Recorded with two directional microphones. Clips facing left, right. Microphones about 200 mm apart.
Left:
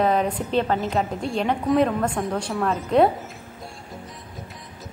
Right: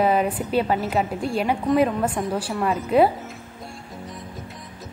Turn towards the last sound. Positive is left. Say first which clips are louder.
# even
turn(degrees=-5)  # may be behind; listen again after turning